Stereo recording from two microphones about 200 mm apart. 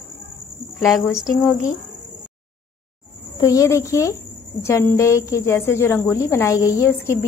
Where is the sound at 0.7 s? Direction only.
Centre (ahead or behind).